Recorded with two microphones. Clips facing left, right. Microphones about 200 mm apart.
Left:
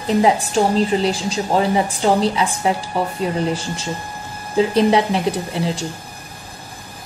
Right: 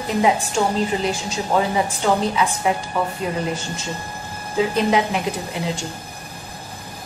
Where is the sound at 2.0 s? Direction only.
30° left (ahead or behind).